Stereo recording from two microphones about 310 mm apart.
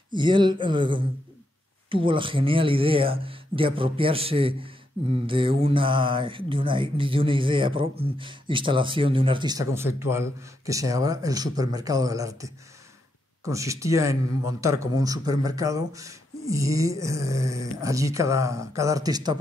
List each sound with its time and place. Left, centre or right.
0.1 s speech: centre